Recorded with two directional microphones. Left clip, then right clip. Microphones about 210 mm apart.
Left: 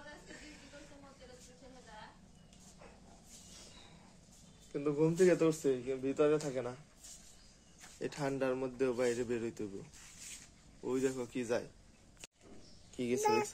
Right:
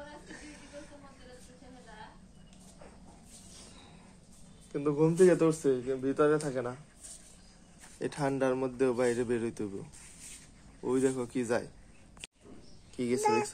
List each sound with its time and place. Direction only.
0.3 s snake: 20° right (ahead or behind)
4.7 s speech: 10° right (ahead or behind)
8.0 s speech: 20° right (ahead or behind)
10.8 s speech: 20° right (ahead or behind)
12.9 s speech: centre (ahead or behind)
13.2 s speech: 25° left (ahead or behind)